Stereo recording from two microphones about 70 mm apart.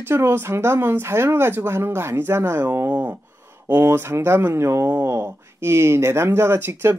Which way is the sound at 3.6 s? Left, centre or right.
Right.